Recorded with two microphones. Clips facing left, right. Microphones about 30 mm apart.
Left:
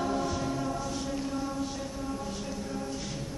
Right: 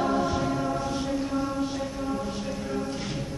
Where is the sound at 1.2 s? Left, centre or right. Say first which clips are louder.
Right 5 dB; right.